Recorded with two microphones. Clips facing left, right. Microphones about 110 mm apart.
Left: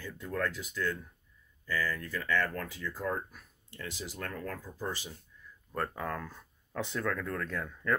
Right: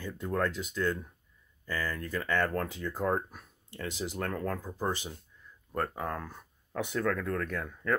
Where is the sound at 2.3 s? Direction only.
45° right (ahead or behind).